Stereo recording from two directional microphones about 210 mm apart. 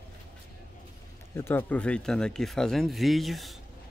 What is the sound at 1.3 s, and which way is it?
Speech, 10° left (ahead or behind).